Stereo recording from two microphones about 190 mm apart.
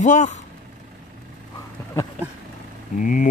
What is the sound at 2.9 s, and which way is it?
Speech, 40° left (ahead or behind).